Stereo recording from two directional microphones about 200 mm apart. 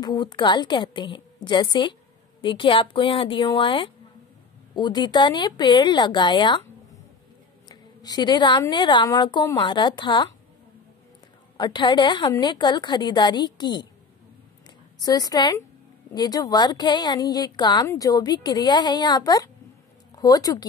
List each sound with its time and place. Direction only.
0.0 s a woman's voice: 20° left (ahead or behind)
7.6 s a woman's voice: 20° left (ahead or behind)
11.5 s a woman's voice: 20° left (ahead or behind)
15.0 s a woman's voice: 20° left (ahead or behind)